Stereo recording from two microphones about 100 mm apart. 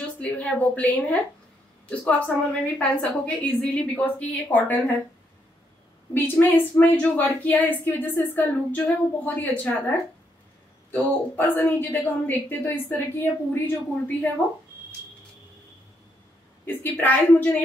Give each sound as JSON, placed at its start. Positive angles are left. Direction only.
{"t": 0.0, "sound": "a woman's voice", "side_deg": 15}
{"t": 6.1, "sound": "a woman's voice", "side_deg": 20}
{"t": 10.9, "sound": "a woman's voice", "side_deg": 20}
{"t": 16.6, "sound": "a woman's voice", "side_deg": 20}